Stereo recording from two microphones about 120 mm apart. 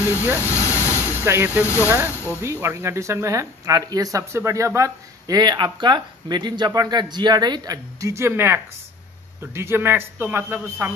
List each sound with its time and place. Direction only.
0.4 s vehicle: 20° left (ahead or behind)
1.2 s speech: 20° right (ahead or behind)
1.6 s speech: 20° left (ahead or behind)
1.9 s speech: 15° right (ahead or behind)